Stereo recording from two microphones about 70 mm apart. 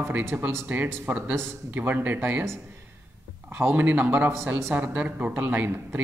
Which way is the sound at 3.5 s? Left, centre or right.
Right.